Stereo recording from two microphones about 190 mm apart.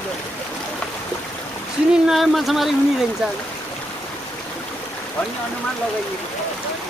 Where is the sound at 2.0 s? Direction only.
Centre (ahead or behind).